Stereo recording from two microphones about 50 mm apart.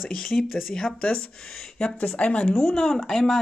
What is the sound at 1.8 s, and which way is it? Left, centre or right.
Speech, centre.